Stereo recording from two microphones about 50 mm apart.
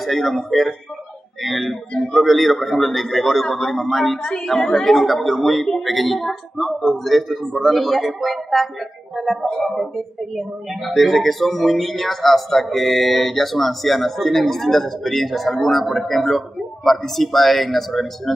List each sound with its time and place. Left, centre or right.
0.0 s speech: centre
4.2 s a woman's voice: centre
4.5 s speech: centre